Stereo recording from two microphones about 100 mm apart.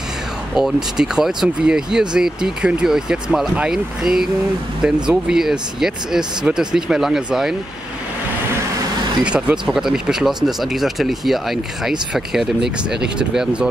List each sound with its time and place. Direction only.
0.6 s speech: 5° right (ahead or behind)
9.2 s speech: 10° right (ahead or behind)